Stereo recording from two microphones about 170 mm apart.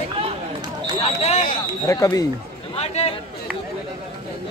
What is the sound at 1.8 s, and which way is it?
Speech, 20° left (ahead or behind).